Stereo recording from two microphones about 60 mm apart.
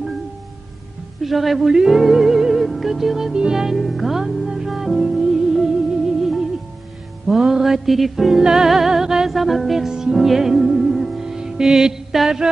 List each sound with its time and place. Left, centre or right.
1.2 s music: centre